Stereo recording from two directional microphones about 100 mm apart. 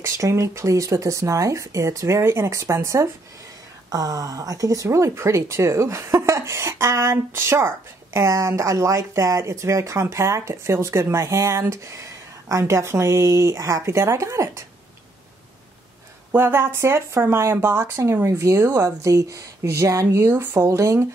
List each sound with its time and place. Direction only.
0.0 s speech: 30° right (ahead or behind)
16.3 s speech: 25° right (ahead or behind)